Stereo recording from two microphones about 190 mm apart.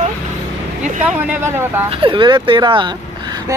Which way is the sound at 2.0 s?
25° right (ahead or behind).